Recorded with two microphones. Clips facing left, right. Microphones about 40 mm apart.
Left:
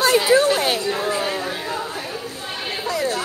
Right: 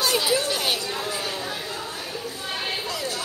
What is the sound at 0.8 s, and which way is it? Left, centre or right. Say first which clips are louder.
Chatter: left 7 dB; left.